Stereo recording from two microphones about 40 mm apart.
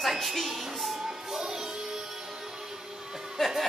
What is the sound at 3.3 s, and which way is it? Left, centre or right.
Music, centre.